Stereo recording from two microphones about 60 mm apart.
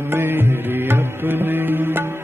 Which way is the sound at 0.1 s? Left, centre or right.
Right.